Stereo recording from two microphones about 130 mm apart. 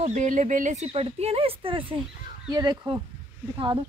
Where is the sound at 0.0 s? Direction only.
70° right (ahead or behind).